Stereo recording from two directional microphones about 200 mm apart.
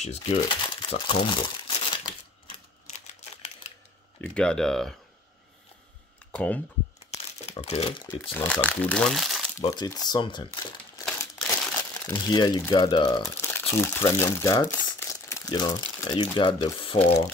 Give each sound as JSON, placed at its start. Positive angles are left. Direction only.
{"t": 0.0, "sound": "speech", "side_deg": 30}
{"t": 4.2, "sound": "speech", "side_deg": 5}
{"t": 6.3, "sound": "speech", "side_deg": 5}
{"t": 7.1, "sound": "crumpling", "side_deg": 30}
{"t": 8.2, "sound": "speech", "side_deg": 10}
{"t": 9.6, "sound": "speech", "side_deg": 15}
{"t": 11.1, "sound": "crumpling", "side_deg": 5}
{"t": 13.7, "sound": "speech", "side_deg": 15}